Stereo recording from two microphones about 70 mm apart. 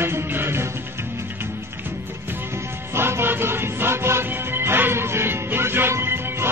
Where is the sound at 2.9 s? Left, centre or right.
Right.